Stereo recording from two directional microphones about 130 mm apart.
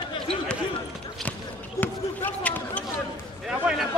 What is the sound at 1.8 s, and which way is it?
Speech, 15° left (ahead or behind).